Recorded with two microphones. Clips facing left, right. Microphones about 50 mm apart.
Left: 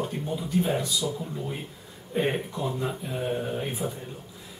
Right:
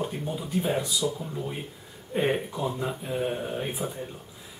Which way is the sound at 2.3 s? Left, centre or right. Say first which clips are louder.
Right 1 dB; centre.